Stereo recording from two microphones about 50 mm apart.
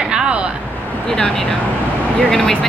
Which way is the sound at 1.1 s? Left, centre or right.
Centre.